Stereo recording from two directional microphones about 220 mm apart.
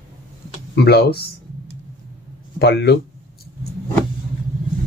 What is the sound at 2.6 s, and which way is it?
Speech, 50° left (ahead or behind).